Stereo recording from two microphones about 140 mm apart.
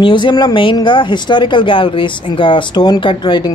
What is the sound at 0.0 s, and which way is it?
Speech, 35° left (ahead or behind).